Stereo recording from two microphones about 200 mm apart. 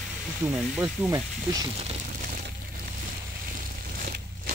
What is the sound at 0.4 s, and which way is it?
Speech, 10° right (ahead or behind).